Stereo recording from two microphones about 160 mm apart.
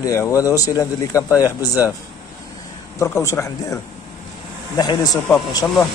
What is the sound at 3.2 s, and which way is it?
Speech, 20° left (ahead or behind).